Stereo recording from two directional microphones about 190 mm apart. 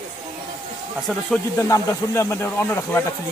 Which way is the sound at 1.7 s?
15° left (ahead or behind).